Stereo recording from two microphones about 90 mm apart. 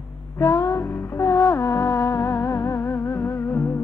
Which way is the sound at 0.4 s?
35° left (ahead or behind).